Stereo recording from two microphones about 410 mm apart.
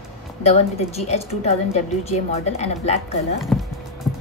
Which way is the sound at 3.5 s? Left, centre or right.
Centre.